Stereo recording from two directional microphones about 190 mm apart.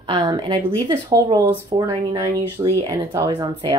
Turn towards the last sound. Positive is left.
turn(degrees=-20)  # may be behind; listen again after turning